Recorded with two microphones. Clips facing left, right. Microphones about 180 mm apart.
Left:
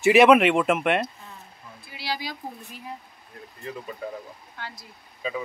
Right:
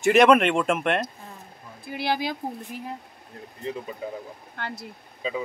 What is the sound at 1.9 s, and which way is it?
Speech, 55° right (ahead or behind).